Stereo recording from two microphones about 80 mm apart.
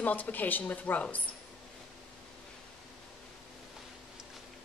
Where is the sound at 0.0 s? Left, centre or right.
Left.